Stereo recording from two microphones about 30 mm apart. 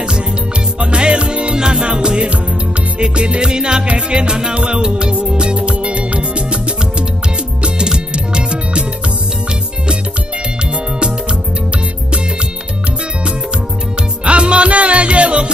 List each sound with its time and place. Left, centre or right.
0.7 s music: right
3.3 s music: right
8.1 s music: right
14.2 s music: right